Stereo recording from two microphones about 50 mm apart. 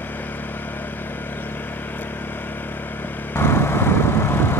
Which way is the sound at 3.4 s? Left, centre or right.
Left.